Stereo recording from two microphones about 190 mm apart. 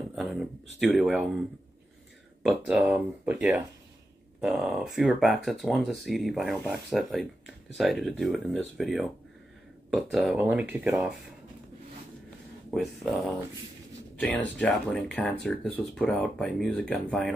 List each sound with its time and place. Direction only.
0.1 s a sound: centre (ahead or behind)
0.7 s speech: centre (ahead or behind)
2.4 s speech: 5° right (ahead or behind)
12.7 s speech: centre (ahead or behind)